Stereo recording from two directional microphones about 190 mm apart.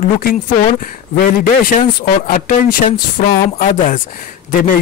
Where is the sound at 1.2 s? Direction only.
45° left (ahead or behind).